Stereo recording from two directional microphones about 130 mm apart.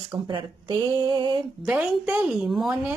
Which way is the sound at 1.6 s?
10° right (ahead or behind).